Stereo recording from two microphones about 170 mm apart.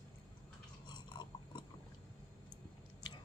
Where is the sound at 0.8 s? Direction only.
25° left (ahead or behind).